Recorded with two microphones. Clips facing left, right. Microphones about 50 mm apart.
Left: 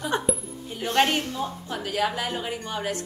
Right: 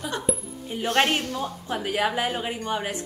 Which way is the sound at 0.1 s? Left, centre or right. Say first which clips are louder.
Left 8 dB; left.